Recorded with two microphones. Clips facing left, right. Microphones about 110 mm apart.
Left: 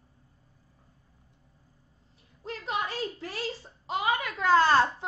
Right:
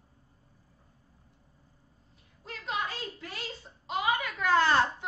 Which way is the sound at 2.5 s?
30° left (ahead or behind).